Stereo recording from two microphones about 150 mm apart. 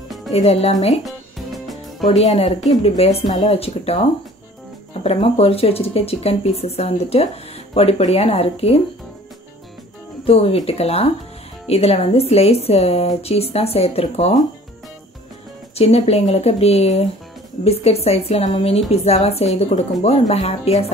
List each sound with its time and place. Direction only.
0.3 s speech: 45° left (ahead or behind)
2.0 s speech: 45° left (ahead or behind)
5.0 s speech: 40° left (ahead or behind)
10.2 s speech: 40° left (ahead or behind)
15.7 s speech: 45° left (ahead or behind)